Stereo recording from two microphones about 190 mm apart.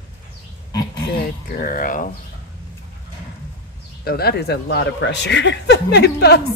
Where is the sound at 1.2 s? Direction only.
45° left (ahead or behind).